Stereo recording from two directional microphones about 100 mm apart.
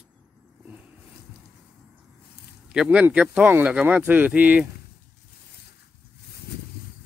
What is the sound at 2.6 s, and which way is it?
Speech, 10° right (ahead or behind).